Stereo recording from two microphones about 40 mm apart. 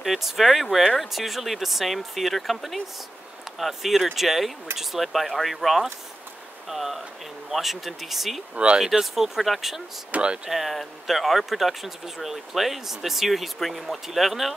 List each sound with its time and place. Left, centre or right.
0.0 s speech: centre
8.7 s speech: centre
10.1 s speech: right
10.5 s speech: centre